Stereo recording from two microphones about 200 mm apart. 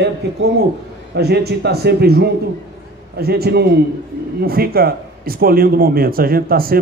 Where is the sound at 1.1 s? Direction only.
55° right (ahead or behind).